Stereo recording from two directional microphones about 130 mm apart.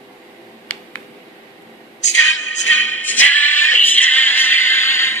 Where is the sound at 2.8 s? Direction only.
15° left (ahead or behind).